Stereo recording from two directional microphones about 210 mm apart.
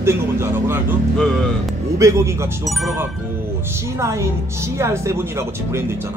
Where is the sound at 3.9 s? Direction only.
15° right (ahead or behind).